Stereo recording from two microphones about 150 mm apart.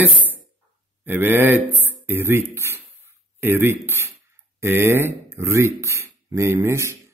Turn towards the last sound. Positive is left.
turn(degrees=-15)  # may be behind; listen again after turning